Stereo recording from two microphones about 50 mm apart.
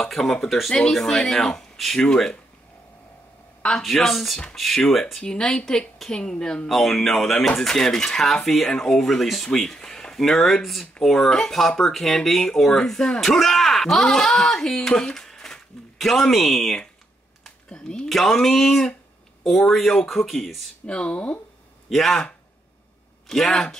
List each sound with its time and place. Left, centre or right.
0.0 s speech: centre
3.8 s speech: centre
5.2 s speech: centre
6.7 s speech: centre
17.6 s a sound: left
18.0 s speech: centre
20.8 s speech: left
21.8 s a man's voice: centre
23.2 s speech: centre